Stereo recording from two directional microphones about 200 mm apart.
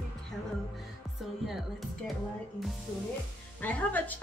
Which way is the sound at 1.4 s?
Centre (ahead or behind).